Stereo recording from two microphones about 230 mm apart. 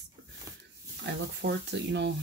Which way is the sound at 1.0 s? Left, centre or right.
Right.